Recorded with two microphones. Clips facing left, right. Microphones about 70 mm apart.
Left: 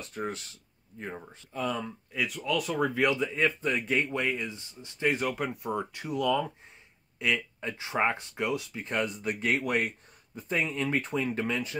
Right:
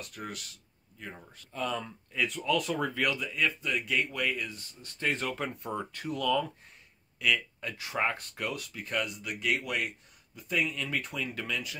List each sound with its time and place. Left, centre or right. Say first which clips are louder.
0.0 s speech: left 6 dB; left
1.5 s speech: left 2 dB; centre
3.0 s speech: left 4 dB; left